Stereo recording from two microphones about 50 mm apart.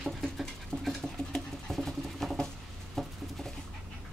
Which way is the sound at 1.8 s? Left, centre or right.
Centre.